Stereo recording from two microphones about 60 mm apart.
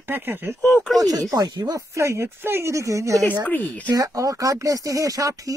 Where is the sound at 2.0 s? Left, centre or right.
Right.